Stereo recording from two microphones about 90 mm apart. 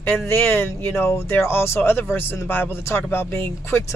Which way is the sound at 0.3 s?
25° left (ahead or behind).